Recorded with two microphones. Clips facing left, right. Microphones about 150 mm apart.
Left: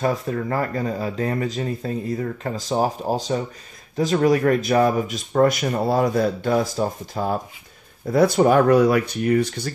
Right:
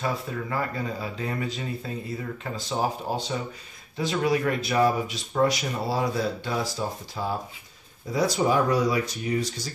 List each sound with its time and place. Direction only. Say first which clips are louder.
0.0 s speech: left 7 dB; 45° left (ahead or behind)